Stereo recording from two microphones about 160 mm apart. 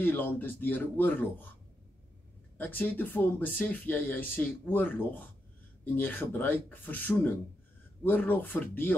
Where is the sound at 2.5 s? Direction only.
10° left (ahead or behind).